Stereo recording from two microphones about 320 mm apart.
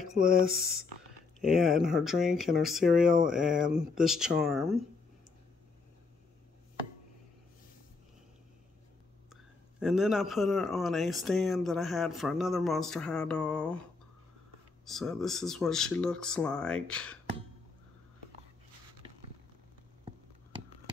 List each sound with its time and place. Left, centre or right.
0.2 s speech: right
1.4 s speech: centre
9.3 s a man's voice: centre
14.9 s speech: centre